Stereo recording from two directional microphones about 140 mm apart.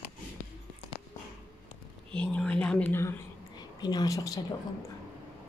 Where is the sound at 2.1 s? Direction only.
10° left (ahead or behind).